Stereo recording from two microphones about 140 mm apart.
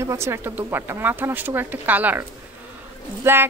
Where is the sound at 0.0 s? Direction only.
20° right (ahead or behind).